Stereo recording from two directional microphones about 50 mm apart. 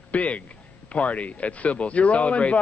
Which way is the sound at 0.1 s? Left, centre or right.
Left.